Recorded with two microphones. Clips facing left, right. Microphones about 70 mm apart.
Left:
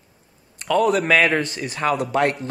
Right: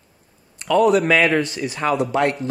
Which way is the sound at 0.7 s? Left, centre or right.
Left.